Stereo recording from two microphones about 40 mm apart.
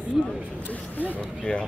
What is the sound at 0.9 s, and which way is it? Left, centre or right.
Speech, left.